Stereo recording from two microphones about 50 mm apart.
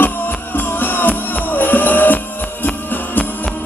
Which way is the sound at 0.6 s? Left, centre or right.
Left.